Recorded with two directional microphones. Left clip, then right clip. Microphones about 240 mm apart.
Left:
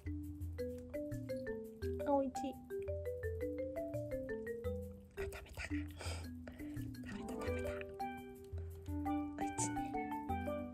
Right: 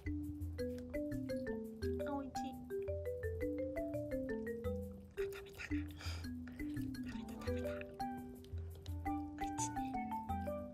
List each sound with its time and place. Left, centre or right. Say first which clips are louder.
0.9 s music: right 2 dB; centre
1.8 s music: left 8 dB; centre
2.7 s marimba: right 2 dB; centre
5.1 s music: right 3 dB; centre
9.0 s music: left 1 dB; centre